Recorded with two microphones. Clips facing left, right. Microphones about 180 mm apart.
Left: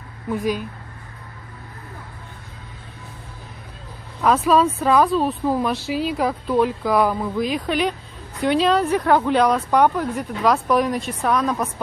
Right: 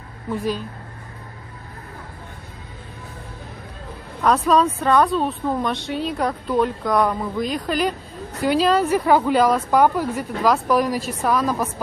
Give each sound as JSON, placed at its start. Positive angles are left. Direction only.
{"t": 0.4, "sound": "speech", "side_deg": 10}
{"t": 4.2, "sound": "speech", "side_deg": 5}